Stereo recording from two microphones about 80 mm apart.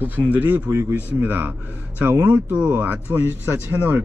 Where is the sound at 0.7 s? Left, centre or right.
Right.